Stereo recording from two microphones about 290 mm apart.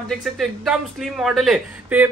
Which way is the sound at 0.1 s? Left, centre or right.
Centre.